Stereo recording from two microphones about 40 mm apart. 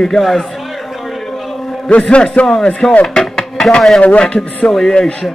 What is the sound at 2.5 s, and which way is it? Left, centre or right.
Speech, centre.